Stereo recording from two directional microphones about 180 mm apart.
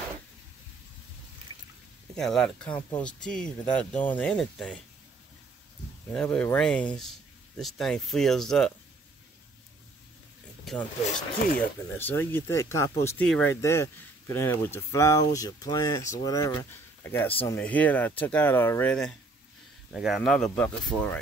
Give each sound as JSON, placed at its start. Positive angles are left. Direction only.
{"t": 2.1, "sound": "speech", "side_deg": 0}
{"t": 6.1, "sound": "speech", "side_deg": 10}
{"t": 10.6, "sound": "speech", "side_deg": 0}
{"t": 13.2, "sound": "speech", "side_deg": 5}
{"t": 13.5, "sound": "speech", "side_deg": 15}